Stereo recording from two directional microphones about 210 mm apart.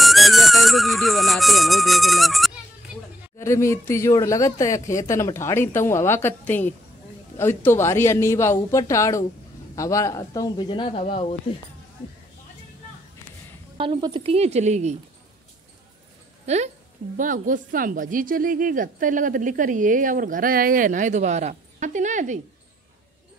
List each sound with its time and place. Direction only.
0.0 s music: centre (ahead or behind)
3.3 s speech: 15° left (ahead or behind)
13.7 s a woman's voice: 25° right (ahead or behind)
16.4 s speech: 30° right (ahead or behind)